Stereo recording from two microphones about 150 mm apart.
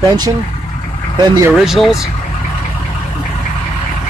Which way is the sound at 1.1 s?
25° right (ahead or behind).